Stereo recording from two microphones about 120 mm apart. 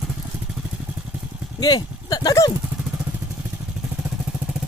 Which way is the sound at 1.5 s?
35° left (ahead or behind).